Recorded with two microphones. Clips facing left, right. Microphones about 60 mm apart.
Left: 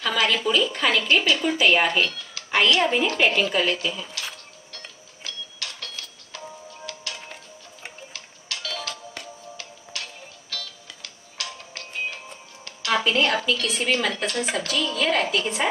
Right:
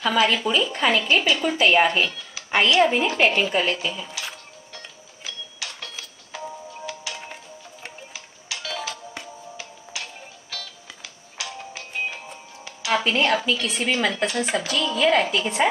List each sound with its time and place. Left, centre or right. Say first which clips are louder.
0.0 s speech: right 2 dB; centre
2.3 s a sound: right 1 dB; centre
2.8 s speech: right 2 dB; centre
4.7 s music: even; centre
13.2 s a woman's voice: right 1 dB; centre